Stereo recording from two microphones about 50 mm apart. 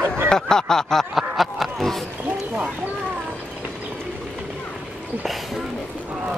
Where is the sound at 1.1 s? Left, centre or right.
Centre.